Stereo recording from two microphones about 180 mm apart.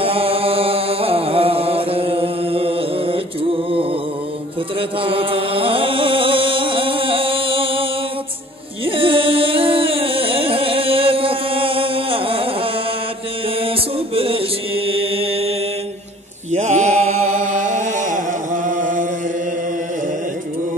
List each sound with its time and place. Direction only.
0.0 s chant: 30° right (ahead or behind)
4.7 s chant: 30° right (ahead or behind)
8.8 s music: 30° right (ahead or behind)
13.6 s mantra: 30° right (ahead or behind)
16.5 s chant: 40° right (ahead or behind)